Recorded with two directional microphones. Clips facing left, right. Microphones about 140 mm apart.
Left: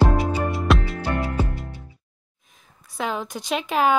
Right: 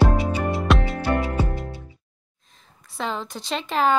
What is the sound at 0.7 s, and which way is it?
Music, centre (ahead or behind).